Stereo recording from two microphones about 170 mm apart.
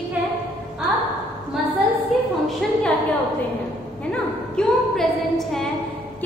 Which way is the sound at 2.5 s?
Centre (ahead or behind).